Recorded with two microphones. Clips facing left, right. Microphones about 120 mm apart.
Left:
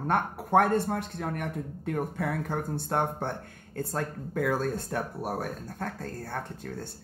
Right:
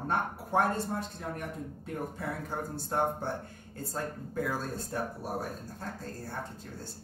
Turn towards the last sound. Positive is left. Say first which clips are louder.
# left 4 dB
turn(degrees=65)  # may be behind; listen again after turning